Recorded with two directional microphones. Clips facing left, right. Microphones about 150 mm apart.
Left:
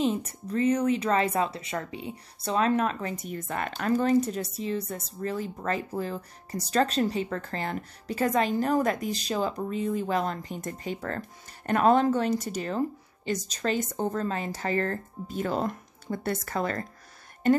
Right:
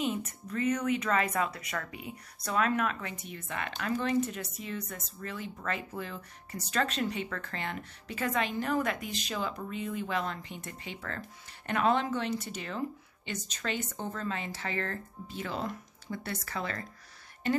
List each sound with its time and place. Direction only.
0.0 s speech: 30° left (ahead or behind)